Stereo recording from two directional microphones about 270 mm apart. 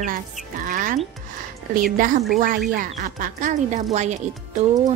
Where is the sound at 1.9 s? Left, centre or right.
Right.